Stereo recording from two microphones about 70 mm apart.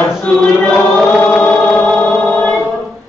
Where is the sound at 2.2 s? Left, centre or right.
Centre.